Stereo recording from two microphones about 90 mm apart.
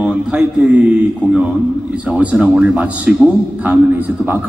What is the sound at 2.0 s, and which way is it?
A woman's voice, 10° right (ahead or behind).